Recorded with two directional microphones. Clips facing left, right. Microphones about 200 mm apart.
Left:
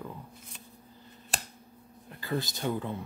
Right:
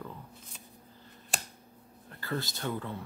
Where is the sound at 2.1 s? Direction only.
15° left (ahead or behind).